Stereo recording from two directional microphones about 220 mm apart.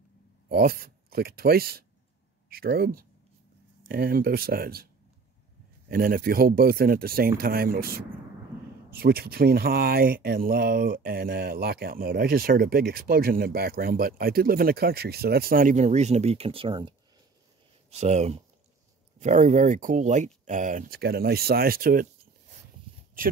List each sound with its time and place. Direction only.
0.5 s speech: 45° right (ahead or behind)
5.9 s speech: 40° right (ahead or behind)